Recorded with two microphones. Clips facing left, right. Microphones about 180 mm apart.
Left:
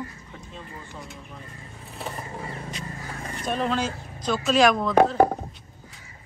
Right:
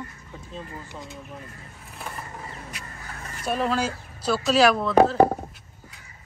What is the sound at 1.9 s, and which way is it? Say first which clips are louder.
Wild animals: left 3 dB; 30° left (ahead or behind).